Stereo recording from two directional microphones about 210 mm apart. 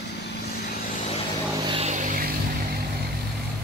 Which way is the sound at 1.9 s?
35° right (ahead or behind).